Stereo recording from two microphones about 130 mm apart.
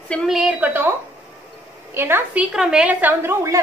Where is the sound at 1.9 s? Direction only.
15° right (ahead or behind).